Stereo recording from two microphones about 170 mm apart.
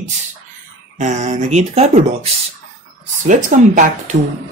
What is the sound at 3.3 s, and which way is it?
Speech, 50° right (ahead or behind).